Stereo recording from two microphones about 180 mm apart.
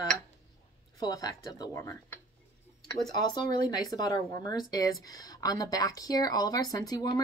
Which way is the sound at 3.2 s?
20° left (ahead or behind).